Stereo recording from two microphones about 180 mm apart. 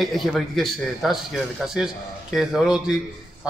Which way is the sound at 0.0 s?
Centre (ahead or behind).